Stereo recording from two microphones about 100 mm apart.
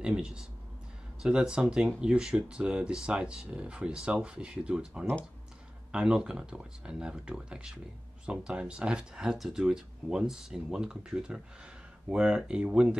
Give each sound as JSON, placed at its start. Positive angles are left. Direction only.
{"t": 0.0, "sound": "speech", "side_deg": -10}